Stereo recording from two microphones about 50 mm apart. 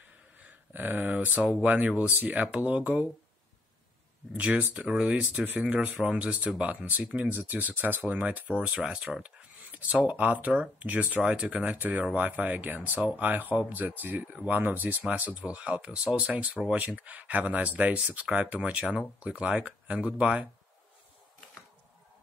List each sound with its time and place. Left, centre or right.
0.4 s a sound: right
1.5 s speech: right
4.7 s speech: centre
5.1 s speech: right
8.0 s speech: right
9.6 s a sound: right
10.0 s speech: right
15.4 s speech: centre